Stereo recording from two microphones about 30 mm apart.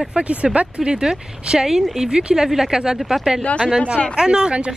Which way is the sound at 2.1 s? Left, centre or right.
Right.